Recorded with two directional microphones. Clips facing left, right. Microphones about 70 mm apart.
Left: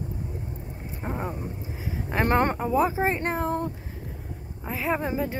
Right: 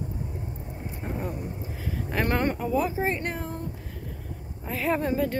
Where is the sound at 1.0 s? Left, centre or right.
Left.